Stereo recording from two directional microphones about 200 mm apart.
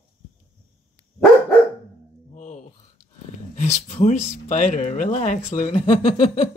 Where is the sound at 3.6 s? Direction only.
35° left (ahead or behind).